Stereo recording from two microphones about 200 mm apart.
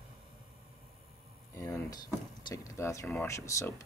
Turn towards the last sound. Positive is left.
turn(degrees=15)  # may be behind; listen again after turning